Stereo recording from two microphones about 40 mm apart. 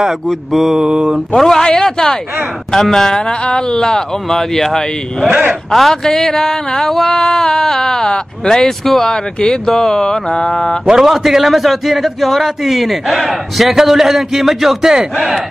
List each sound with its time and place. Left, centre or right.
0.5 s a man's voice: centre
0.7 s mantra: centre
1.3 s a sound: centre
9.1 s speech: left
9.7 s a sound: centre
10.9 s a man's voice: centre